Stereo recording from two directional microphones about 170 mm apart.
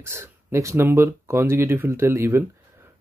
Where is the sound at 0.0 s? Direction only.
15° right (ahead or behind).